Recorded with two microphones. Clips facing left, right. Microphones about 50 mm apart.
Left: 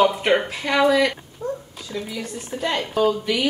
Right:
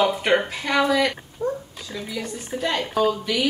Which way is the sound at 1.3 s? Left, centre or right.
Centre.